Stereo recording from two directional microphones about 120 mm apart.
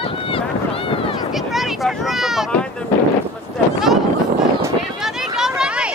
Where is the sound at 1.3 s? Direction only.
Centre (ahead or behind).